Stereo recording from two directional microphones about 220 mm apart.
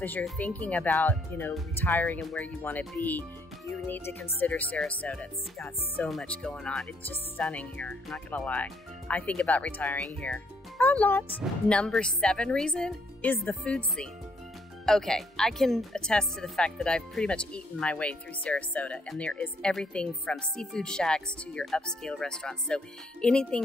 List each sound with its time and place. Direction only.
0.0 s speech: 5° left (ahead or behind)